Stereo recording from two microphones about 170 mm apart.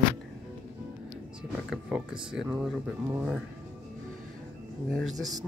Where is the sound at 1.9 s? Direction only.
5° right (ahead or behind).